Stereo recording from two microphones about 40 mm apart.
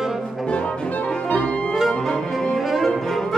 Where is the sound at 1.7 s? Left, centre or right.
Centre.